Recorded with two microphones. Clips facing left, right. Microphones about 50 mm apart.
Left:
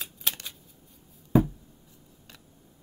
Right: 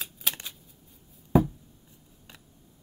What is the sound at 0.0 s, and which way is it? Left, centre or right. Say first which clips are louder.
Shuffling cards: even; centre.